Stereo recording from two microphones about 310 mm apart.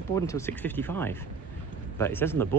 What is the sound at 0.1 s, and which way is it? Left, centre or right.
Speech, centre.